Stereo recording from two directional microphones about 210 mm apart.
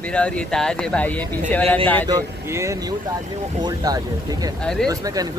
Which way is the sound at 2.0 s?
15° right (ahead or behind).